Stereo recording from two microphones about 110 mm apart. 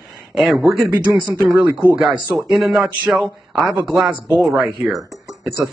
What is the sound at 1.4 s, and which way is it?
Speech, 30° right (ahead or behind).